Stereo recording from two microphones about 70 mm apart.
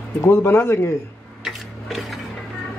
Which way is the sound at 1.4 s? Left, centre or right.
Centre.